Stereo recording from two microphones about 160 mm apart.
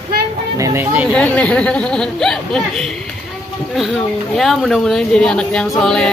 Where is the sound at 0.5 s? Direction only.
20° right (ahead or behind).